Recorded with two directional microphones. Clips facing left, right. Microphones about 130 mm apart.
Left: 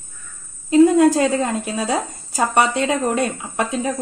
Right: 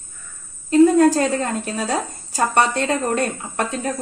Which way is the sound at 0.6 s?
10° left (ahead or behind).